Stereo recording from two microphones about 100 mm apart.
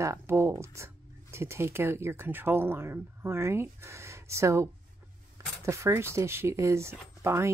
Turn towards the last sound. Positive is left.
turn(degrees=-25)  # may be behind; listen again after turning